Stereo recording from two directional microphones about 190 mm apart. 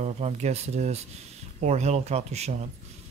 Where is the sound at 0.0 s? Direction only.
35° right (ahead or behind).